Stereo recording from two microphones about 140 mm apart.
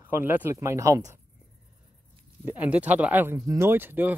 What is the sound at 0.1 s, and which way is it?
Speech, 15° right (ahead or behind).